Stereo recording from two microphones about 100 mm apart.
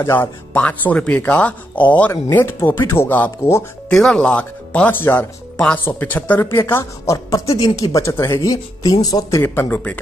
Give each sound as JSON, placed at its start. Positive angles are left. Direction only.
{"t": 0.0, "sound": "speech", "side_deg": 20}
{"t": 3.9, "sound": "speech", "side_deg": 5}
{"t": 9.4, "sound": "speech", "side_deg": 20}